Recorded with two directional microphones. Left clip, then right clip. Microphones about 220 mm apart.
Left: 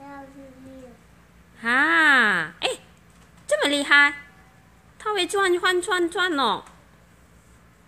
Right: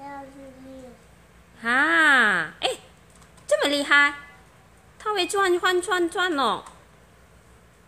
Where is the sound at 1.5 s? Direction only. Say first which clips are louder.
Left 1 dB; 5° right (ahead or behind).